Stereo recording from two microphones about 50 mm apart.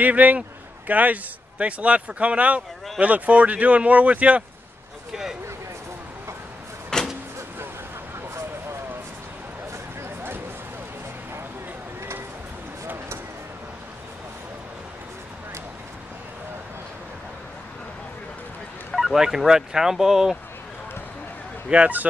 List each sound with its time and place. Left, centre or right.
0.0 s a man's voice: right
5.1 s speech: centre
6.9 s vehicle: centre
9.7 s a sound: right
18.9 s speech: centre
21.6 s speech: right